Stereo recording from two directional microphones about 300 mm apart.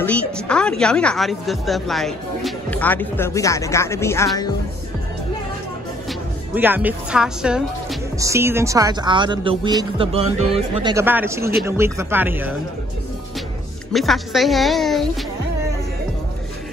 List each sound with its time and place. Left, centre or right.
0.0 s a woman's voice: centre
6.0 s speech: centre
13.9 s a woman's voice: centre